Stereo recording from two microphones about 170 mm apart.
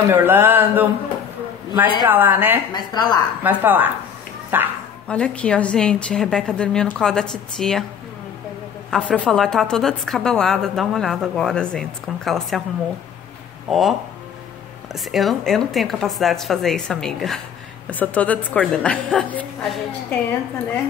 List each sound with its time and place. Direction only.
0.1 s a man's voice: 10° right (ahead or behind)
2.7 s speech: 25° left (ahead or behind)
3.4 s speech: 10° right (ahead or behind)
5.0 s a woman's voice: 5° left (ahead or behind)
8.9 s a woman's voice: 5° left (ahead or behind)
13.7 s a woman's voice: centre (ahead or behind)
15.0 s a woman's voice: centre (ahead or behind)